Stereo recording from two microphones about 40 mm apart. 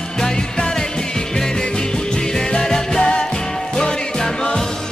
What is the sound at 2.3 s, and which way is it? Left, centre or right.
Music, centre.